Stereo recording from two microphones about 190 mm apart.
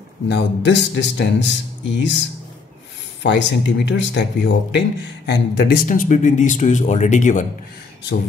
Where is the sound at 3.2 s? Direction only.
70° left (ahead or behind); by 7.5 s 40° left (ahead or behind).